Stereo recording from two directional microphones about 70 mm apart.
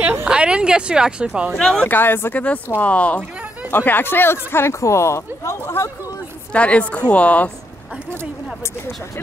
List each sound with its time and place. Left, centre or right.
0.2 s a woman's voice: centre
1.5 s speech: centre
1.9 s speech: left
2.3 s speech: left
6.5 s speech: centre